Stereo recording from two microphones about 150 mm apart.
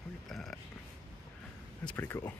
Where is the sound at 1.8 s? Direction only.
10° left (ahead or behind).